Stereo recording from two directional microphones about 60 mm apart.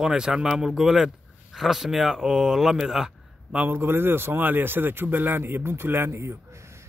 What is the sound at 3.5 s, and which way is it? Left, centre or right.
Speech, right.